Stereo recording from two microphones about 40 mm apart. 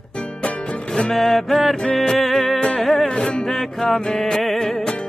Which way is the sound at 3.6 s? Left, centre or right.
Centre.